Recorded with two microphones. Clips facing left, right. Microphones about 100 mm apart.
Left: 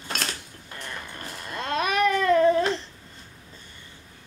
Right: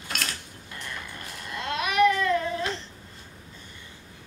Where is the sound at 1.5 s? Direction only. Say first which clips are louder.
Right 1 dB; 40° left (ahead or behind).